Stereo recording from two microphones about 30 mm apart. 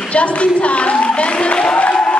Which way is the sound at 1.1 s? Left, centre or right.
Left.